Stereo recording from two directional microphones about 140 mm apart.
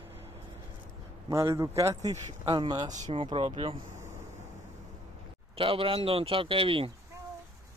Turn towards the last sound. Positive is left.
turn(degrees=-40)  # may be behind; listen again after turning